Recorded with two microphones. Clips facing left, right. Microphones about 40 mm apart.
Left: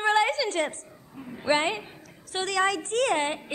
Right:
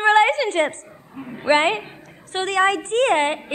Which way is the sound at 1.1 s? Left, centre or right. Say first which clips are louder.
Right 7 dB; right.